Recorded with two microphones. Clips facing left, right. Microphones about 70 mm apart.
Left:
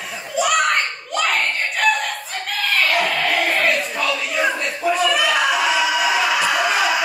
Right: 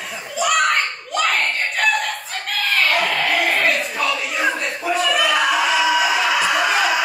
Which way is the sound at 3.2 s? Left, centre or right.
Centre.